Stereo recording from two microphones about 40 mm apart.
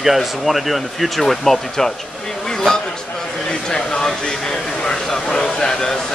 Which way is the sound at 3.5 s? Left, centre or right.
Centre.